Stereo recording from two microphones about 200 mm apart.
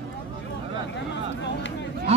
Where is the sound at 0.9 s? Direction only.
60° left (ahead or behind).